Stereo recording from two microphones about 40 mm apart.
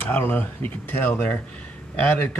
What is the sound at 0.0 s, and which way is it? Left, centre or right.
Speech, left.